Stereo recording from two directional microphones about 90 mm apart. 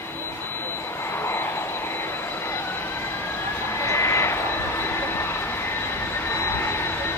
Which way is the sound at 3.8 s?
30° left (ahead or behind).